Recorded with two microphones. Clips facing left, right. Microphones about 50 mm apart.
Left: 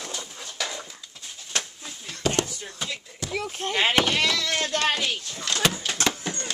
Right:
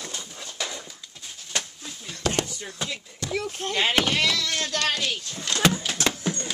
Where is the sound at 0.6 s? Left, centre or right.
Left.